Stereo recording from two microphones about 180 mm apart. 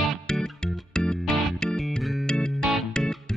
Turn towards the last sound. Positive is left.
turn(degrees=0)  # may be behind; listen again after turning